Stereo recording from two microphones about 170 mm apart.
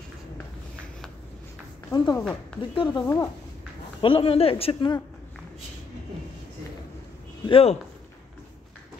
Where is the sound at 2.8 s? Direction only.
25° left (ahead or behind).